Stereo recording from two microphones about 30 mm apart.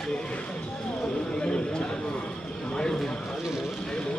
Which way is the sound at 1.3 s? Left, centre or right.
Left.